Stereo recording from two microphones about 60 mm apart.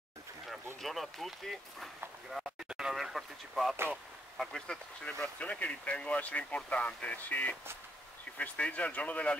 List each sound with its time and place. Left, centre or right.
0.7 s speech: centre
2.9 s speech: centre
5.4 s speech: left